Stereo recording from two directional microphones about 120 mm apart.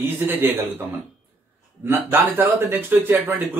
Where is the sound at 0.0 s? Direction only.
15° right (ahead or behind).